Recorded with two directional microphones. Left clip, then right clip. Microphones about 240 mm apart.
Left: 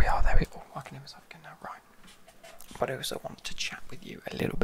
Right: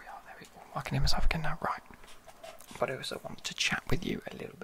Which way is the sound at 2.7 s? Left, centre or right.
Centre.